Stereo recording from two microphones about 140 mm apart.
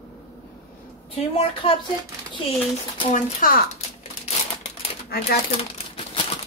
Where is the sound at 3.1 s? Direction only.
70° left (ahead or behind).